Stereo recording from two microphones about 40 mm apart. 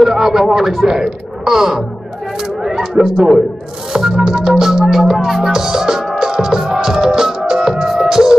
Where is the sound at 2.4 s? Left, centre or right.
Centre.